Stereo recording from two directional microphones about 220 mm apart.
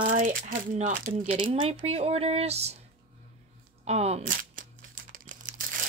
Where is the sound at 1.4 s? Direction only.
25° right (ahead or behind).